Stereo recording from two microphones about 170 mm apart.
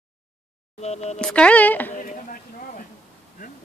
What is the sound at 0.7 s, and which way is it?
Speech, 40° left (ahead or behind).